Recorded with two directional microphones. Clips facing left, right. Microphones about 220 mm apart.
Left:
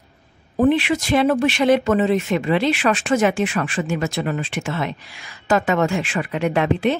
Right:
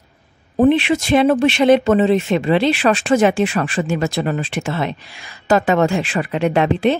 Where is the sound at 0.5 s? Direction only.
25° right (ahead or behind).